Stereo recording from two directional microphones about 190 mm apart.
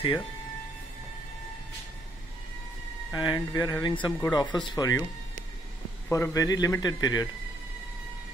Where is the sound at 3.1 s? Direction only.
20° left (ahead or behind).